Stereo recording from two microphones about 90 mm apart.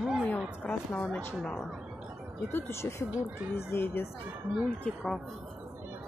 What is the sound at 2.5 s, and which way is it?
A woman's voice, 25° left (ahead or behind).